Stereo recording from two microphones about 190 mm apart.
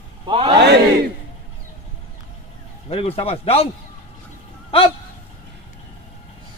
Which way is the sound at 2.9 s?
30° left (ahead or behind).